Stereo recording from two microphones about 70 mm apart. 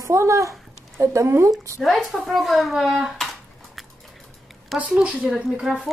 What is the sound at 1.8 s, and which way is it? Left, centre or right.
Speech, centre.